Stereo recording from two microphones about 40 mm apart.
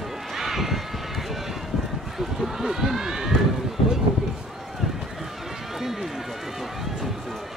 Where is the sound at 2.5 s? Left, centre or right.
Centre.